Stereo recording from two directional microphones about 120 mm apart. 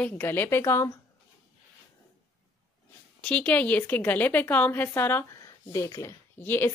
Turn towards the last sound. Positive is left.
turn(degrees=20)  # may be behind; listen again after turning